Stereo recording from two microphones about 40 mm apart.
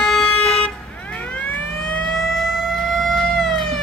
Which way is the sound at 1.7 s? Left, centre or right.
Left.